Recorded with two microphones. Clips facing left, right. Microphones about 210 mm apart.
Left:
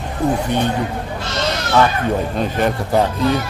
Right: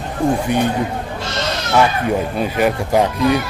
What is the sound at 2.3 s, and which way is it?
Speech, 10° right (ahead or behind).